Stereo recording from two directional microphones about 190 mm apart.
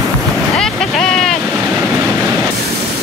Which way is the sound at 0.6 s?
Centre (ahead or behind).